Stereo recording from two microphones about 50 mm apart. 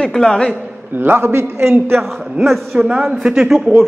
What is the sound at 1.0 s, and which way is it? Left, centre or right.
A man's voice, right.